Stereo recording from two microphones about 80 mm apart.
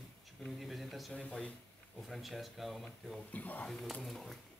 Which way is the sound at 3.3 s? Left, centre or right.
Centre.